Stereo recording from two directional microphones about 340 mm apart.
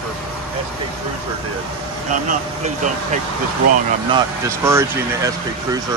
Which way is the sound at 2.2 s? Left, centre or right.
Right.